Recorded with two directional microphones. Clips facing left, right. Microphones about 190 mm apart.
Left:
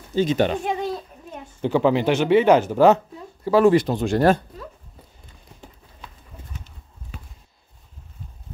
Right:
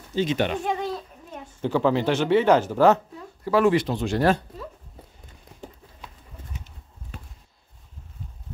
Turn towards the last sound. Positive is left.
turn(degrees=-20)  # may be behind; listen again after turning